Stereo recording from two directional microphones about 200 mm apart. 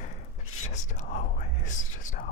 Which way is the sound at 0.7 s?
35° left (ahead or behind).